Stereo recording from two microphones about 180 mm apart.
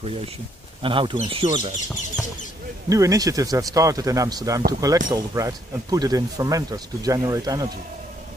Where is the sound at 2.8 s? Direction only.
20° right (ahead or behind).